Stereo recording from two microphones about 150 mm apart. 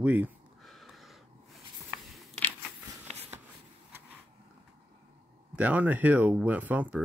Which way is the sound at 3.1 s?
45° right (ahead or behind).